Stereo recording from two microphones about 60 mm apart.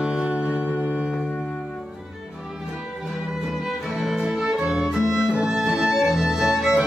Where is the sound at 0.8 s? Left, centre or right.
Right.